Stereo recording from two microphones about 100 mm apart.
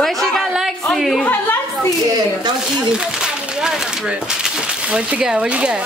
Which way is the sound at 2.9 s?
10° right (ahead or behind).